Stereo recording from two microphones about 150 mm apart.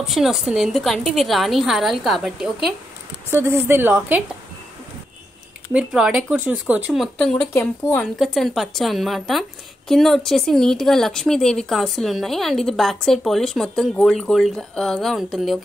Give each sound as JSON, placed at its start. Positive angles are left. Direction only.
{"t": 0.0, "sound": "a woman's voice", "side_deg": 0}
{"t": 3.3, "sound": "a woman's voice", "side_deg": -15}
{"t": 5.7, "sound": "a woman's voice", "side_deg": -5}
{"t": 8.2, "sound": "a woman's voice", "side_deg": 0}